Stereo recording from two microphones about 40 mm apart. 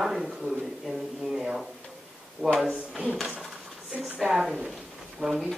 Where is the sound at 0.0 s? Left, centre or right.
Centre.